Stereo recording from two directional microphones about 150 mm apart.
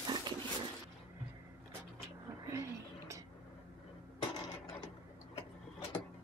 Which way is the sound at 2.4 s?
20° right (ahead or behind).